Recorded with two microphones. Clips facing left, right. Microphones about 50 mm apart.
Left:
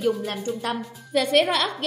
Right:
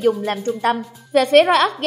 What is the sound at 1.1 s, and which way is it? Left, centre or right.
Speech, right.